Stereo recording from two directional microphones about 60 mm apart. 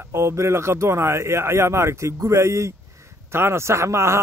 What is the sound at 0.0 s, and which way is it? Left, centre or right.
Speech, right.